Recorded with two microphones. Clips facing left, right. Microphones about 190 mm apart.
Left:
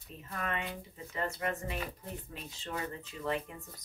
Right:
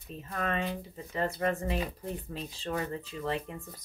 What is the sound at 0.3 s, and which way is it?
Speech, 35° right (ahead or behind).